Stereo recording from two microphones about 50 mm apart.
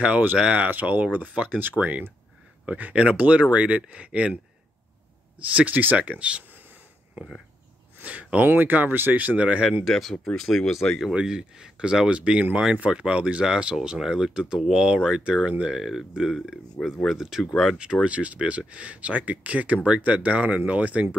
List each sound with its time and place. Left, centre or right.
0.0 s speech: right
0.7 s speech: right
5.5 s speech: right
8.0 s a sound: right
8.5 s speech: right
9.8 s speech: centre
11.1 s speech: centre
13.7 s speech: centre
15.6 s speech: centre
18.0 s speech: right